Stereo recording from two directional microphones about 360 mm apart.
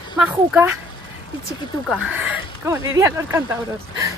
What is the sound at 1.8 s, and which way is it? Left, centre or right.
Speech, centre.